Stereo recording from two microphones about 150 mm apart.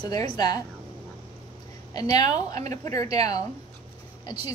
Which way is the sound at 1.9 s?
25° left (ahead or behind).